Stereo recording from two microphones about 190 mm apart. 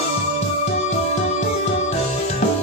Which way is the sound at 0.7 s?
35° left (ahead or behind).